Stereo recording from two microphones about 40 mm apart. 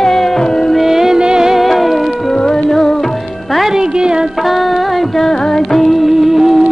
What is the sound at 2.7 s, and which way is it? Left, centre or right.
Music, centre.